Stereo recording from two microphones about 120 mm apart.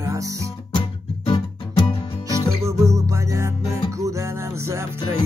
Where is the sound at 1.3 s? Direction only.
45° left (ahead or behind).